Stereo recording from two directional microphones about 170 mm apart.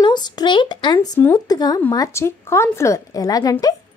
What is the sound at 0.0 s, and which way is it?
A woman's voice, 25° left (ahead or behind).